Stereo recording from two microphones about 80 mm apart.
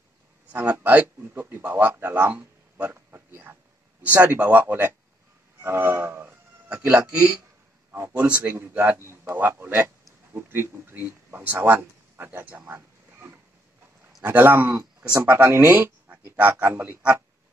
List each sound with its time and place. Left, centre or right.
0.5 s a man's voice: right